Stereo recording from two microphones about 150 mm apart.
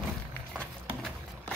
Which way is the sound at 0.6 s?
5° left (ahead or behind).